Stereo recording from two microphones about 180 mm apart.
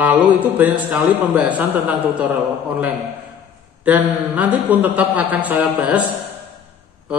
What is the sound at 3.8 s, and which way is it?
Speech, 10° right (ahead or behind).